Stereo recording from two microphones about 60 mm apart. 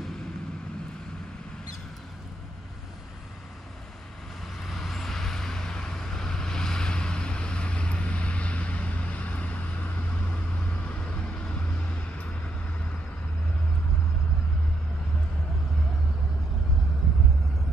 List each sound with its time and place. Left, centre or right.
4.6 s vehicle: centre; by 12.3 s left